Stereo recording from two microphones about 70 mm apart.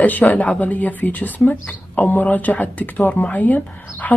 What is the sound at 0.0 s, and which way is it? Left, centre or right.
Speech, left.